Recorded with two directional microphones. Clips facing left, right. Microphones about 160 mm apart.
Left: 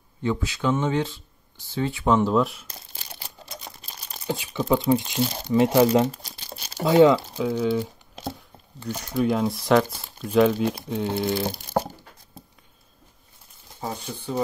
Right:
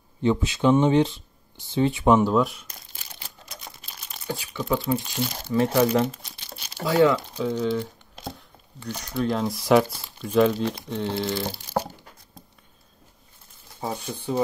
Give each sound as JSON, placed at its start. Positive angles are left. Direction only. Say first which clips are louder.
{"t": 0.2, "sound": "speech", "louder": "right 4 dB", "side_deg": -20}
{"t": 2.2, "sound": "speech", "louder": "even", "side_deg": 0}
{"t": 4.3, "sound": "speech", "louder": "left 3 dB", "side_deg": 20}
{"t": 6.1, "sound": "crumpling", "louder": "left 3 dB", "side_deg": 40}
{"t": 6.8, "sound": "speech", "louder": "left 4 dB", "side_deg": 20}
{"t": 7.3, "sound": "crumpling", "louder": "left 1 dB", "side_deg": 5}
{"t": 8.8, "sound": "speech", "louder": "left 3 dB", "side_deg": 10}